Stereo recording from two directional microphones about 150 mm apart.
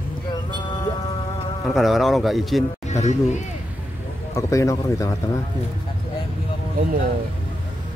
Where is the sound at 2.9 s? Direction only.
50° left (ahead or behind).